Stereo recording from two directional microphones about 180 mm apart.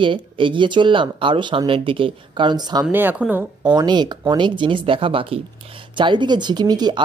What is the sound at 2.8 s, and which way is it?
Speech, 10° right (ahead or behind).